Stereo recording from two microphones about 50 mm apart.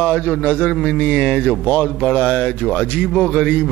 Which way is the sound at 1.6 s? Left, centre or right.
Left.